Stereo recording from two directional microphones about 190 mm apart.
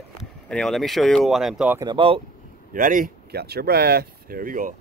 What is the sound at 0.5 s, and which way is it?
Speech, 5° left (ahead or behind).